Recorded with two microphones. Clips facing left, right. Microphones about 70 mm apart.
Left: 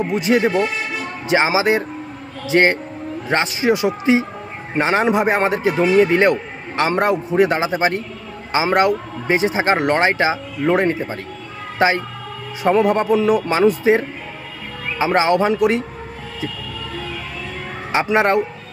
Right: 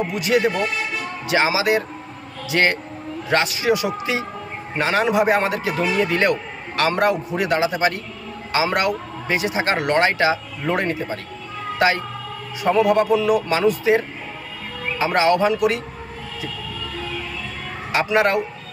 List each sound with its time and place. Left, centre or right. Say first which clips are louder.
0.1 s a man's voice: left 4 dB; left
12.6 s a man's voice: left 1 dB; left
18.0 s a man's voice: left 2 dB; left